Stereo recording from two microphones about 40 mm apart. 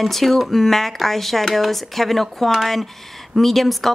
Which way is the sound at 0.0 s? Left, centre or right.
Centre.